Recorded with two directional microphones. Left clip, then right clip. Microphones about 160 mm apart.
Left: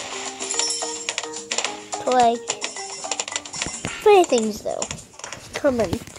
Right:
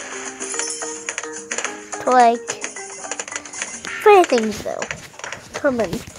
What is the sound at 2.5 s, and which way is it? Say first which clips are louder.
Music: even; 50° right (ahead or behind).